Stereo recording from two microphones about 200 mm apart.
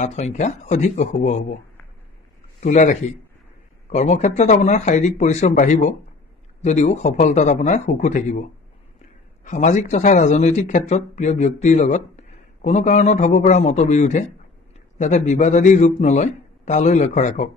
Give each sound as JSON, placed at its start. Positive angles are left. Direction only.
{"t": 0.0, "sound": "speech", "side_deg": 35}
{"t": 2.6, "sound": "speech", "side_deg": 35}